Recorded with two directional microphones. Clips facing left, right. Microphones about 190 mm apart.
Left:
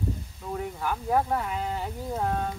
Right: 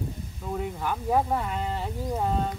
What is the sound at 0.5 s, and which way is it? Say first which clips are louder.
Speech: right 1 dB; centre (ahead or behind).